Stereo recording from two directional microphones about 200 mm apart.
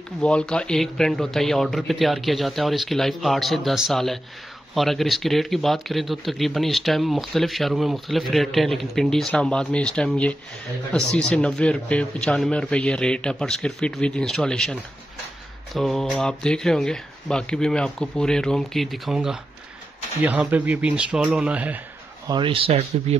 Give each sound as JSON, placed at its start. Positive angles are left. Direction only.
{"t": 0.2, "sound": "speech", "side_deg": 5}
{"t": 22.3, "sound": "speech", "side_deg": -25}